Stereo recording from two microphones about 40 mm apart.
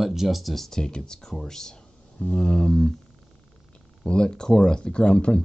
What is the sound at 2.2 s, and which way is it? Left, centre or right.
Speech, left.